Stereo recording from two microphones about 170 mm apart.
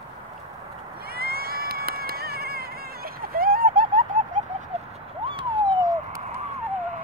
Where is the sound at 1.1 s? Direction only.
65° right (ahead or behind); by 4.4 s 50° right (ahead or behind).